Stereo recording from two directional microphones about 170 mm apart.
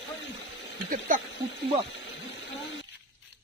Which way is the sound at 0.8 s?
50° right (ahead or behind).